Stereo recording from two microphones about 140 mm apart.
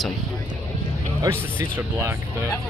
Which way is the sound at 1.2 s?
15° right (ahead or behind).